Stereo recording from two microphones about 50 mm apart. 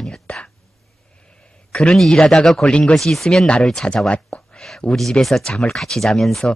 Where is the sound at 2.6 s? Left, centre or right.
Centre.